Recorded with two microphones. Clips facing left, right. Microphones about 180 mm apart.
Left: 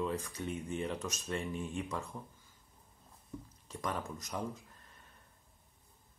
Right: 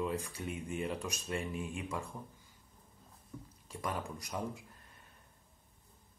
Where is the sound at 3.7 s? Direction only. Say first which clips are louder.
Even; 10° right (ahead or behind).